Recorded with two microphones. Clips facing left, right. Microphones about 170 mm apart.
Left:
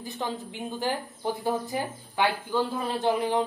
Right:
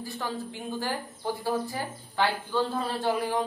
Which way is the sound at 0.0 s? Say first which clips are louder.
Left 1 dB; 20° left (ahead or behind).